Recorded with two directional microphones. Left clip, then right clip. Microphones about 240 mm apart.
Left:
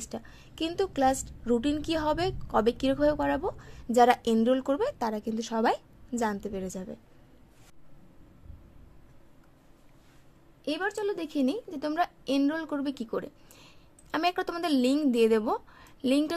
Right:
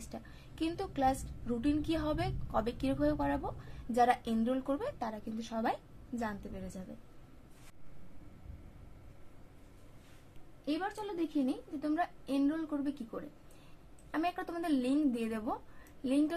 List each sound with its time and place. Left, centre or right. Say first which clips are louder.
0.1 s a woman's voice: left 7 dB; left
10.6 s a woman's voice: left 7 dB; left